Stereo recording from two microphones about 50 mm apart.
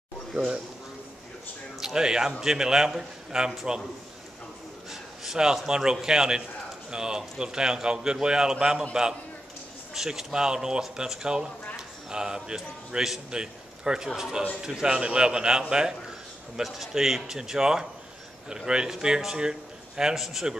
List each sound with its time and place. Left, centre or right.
1.8 s a man's voice: centre
5.2 s a man's voice: centre
9.9 s a man's voice: centre
16.6 s a man's voice: centre